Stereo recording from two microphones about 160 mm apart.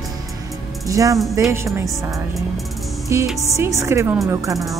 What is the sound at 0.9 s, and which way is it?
Speech, 20° right (ahead or behind).